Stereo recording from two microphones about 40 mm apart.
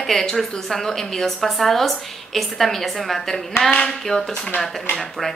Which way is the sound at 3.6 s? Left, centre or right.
Left.